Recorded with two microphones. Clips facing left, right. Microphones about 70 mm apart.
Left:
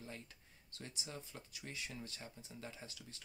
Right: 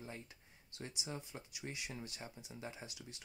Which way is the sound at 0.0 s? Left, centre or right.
Centre.